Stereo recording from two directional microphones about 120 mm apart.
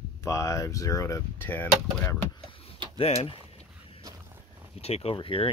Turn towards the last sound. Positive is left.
turn(degrees=45)  # may be behind; listen again after turning